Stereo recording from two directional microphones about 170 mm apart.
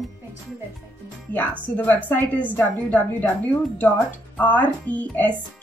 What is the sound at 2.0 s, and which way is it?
Speech, 10° left (ahead or behind).